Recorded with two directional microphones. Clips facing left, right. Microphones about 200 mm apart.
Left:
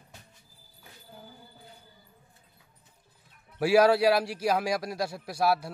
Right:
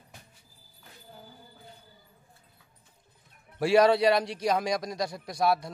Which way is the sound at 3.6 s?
5° left (ahead or behind).